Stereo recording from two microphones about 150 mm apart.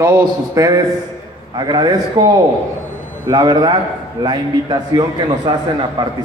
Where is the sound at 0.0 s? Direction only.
20° right (ahead or behind).